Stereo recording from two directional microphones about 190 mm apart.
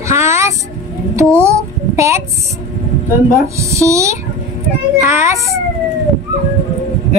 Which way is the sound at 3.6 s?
15° right (ahead or behind).